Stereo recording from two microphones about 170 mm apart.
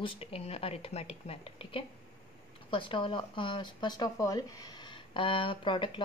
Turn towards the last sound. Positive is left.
turn(degrees=30)  # may be behind; listen again after turning